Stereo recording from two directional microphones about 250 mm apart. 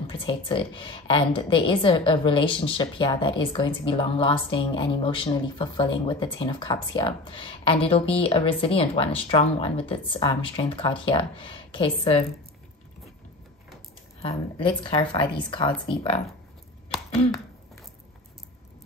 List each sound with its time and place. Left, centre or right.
0.0 s a woman's voice: centre
14.2 s a woman's voice: left